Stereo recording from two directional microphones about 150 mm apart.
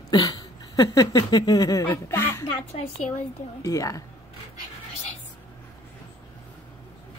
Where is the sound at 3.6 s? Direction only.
20° left (ahead or behind).